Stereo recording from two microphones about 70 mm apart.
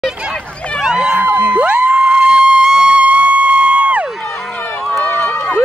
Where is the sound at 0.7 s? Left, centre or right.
Centre.